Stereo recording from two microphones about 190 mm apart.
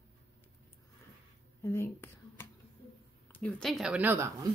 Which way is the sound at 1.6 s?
10° left (ahead or behind).